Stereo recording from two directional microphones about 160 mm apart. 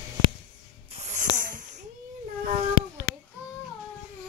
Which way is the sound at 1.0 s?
50° right (ahead or behind).